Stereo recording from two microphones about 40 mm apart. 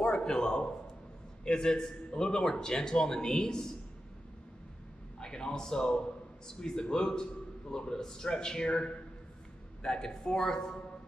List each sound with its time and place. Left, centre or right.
0.0 s a man's voice: centre
5.2 s a man's voice: centre